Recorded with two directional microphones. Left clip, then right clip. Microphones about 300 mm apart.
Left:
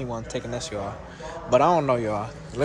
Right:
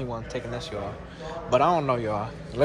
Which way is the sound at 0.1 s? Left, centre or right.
Centre.